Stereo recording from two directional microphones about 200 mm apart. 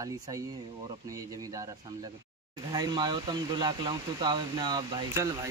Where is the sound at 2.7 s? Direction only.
20° right (ahead or behind).